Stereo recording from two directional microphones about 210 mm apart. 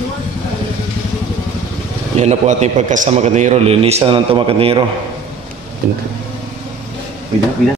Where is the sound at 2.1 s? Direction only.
35° right (ahead or behind).